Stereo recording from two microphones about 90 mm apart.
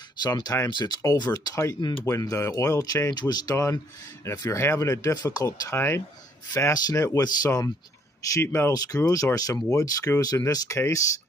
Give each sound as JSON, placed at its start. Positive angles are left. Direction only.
{"t": 0.2, "sound": "speech", "side_deg": 45}
{"t": 0.7, "sound": "speech", "side_deg": 55}
{"t": 3.2, "sound": "speech", "side_deg": 50}
{"t": 4.5, "sound": "speech", "side_deg": 35}
{"t": 5.1, "sound": "speech", "side_deg": 45}
{"t": 5.8, "sound": "speech", "side_deg": 30}
{"t": 6.7, "sound": "speech", "side_deg": 40}